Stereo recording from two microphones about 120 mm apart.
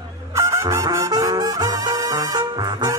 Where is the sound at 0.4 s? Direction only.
25° right (ahead or behind).